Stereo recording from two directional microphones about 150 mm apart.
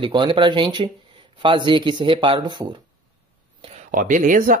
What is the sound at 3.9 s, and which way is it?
Speech, 65° right (ahead or behind).